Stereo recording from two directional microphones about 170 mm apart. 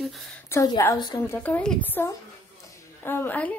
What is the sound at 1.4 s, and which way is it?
A woman's voice, 10° left (ahead or behind).